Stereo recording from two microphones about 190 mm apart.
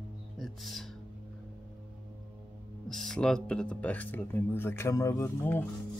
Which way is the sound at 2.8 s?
Centre (ahead or behind).